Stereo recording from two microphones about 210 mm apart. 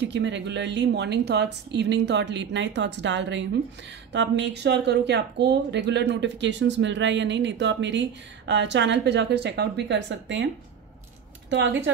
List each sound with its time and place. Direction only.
0.0 s speech: 55° right (ahead or behind)
11.5 s speech: 55° right (ahead or behind)